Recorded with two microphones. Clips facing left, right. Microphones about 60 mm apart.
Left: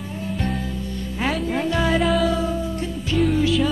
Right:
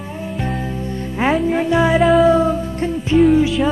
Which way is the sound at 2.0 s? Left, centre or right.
Centre.